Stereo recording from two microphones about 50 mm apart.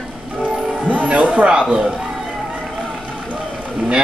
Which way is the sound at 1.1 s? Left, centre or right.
Right.